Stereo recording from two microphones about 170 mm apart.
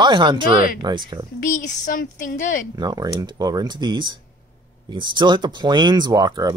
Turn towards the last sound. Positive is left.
turn(degrees=-20)  # may be behind; listen again after turning